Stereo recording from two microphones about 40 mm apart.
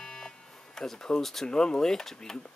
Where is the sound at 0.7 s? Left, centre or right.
Centre.